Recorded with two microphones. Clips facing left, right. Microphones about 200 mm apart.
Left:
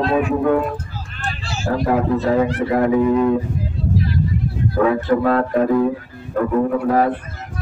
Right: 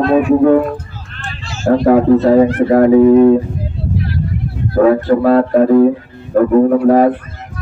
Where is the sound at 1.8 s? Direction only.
45° right (ahead or behind).